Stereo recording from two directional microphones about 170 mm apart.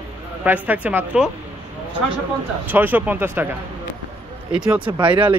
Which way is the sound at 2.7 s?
10° right (ahead or behind).